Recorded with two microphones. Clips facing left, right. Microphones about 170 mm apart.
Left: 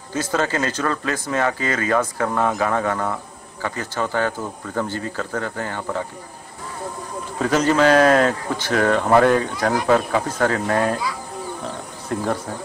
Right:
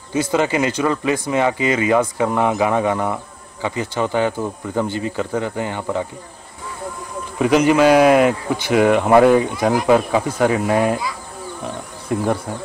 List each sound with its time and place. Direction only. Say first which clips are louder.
0.1 s speech: right 4 dB; 15° right (ahead or behind)
7.3 s speech: right 4 dB; 15° right (ahead or behind)
11.6 s wild animals: right 2 dB; 15° right (ahead or behind)